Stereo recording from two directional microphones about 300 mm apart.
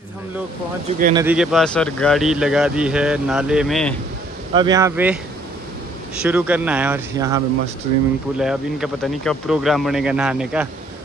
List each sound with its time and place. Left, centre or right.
0.8 s speech: right
1.1 s speech: centre
4.6 s speech: centre
6.2 s speech: centre
8.4 s speech: centre